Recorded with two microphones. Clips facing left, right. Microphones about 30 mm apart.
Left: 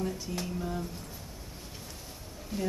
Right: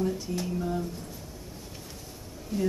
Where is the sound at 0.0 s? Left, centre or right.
Centre.